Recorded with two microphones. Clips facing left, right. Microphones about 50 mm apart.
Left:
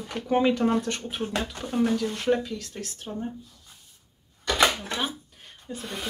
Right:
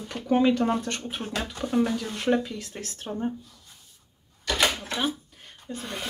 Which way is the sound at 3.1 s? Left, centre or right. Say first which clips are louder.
Right 2 dB; right.